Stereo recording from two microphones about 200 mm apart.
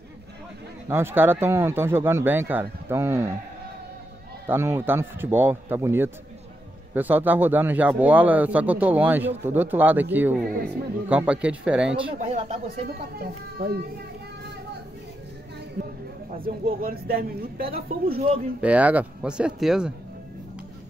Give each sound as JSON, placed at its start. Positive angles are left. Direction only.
{"t": 0.8, "sound": "a man's voice", "side_deg": -10}
{"t": 4.5, "sound": "a man's voice", "side_deg": -10}
{"t": 12.2, "sound": "speech", "side_deg": -35}
{"t": 12.8, "sound": "speech", "side_deg": -50}
{"t": 16.3, "sound": "speech", "side_deg": -45}
{"t": 18.6, "sound": "speech", "side_deg": -5}